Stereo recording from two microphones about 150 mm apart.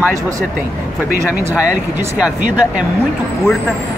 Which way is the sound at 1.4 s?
15° right (ahead or behind).